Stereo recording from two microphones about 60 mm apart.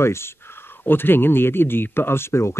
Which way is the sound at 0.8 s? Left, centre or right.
Left.